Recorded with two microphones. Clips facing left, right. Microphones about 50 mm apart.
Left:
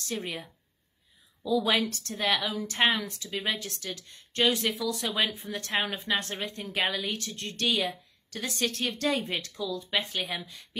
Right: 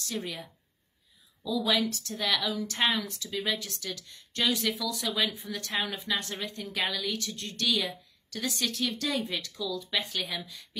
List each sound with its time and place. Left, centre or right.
0.0 s a woman's voice: left